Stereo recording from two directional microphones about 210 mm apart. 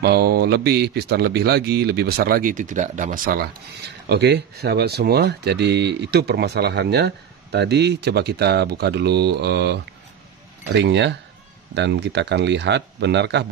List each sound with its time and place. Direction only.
0.0 s speech: 50° right (ahead or behind)
10.8 s speech: 55° right (ahead or behind)